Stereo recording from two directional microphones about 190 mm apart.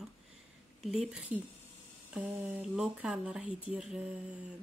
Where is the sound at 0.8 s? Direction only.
5° right (ahead or behind).